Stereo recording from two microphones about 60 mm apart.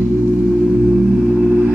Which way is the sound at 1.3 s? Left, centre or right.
Centre.